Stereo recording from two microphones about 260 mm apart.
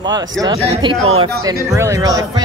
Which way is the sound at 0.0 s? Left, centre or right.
Centre.